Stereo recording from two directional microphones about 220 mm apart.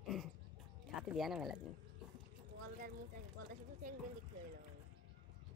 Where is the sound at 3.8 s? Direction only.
40° right (ahead or behind).